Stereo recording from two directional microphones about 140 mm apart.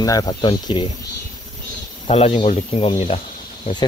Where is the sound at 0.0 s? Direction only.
25° left (ahead or behind).